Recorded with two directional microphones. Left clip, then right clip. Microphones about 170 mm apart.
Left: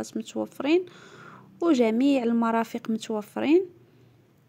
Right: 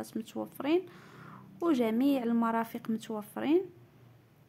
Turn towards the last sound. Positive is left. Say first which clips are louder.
# left 7 dB
turn(degrees=30)  # may be behind; listen again after turning